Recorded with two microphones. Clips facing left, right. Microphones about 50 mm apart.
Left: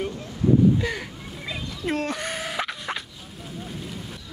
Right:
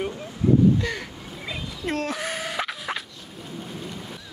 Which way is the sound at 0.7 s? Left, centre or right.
Centre.